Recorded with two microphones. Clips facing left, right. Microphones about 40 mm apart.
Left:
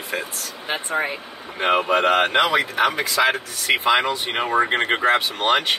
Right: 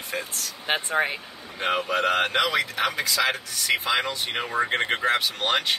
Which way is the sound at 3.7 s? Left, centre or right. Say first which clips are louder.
Left 6 dB; left.